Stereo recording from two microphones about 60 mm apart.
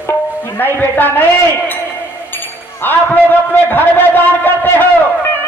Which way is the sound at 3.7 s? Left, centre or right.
Left.